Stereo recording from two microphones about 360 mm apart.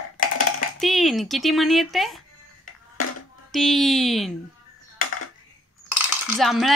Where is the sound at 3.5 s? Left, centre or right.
Centre.